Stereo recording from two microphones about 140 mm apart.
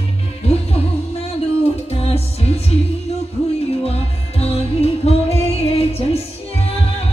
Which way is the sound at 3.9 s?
45° left (ahead or behind).